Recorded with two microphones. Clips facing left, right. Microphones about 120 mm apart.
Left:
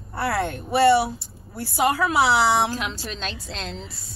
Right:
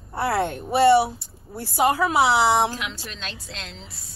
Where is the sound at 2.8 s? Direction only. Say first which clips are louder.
Left 4 dB; 35° left (ahead or behind).